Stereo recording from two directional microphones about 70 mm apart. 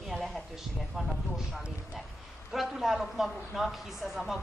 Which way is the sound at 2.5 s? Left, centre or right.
Centre.